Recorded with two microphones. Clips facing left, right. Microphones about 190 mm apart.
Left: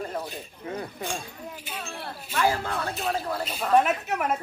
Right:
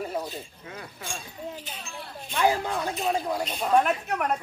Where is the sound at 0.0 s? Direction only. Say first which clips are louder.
Right 1 dB; 10° right (ahead or behind).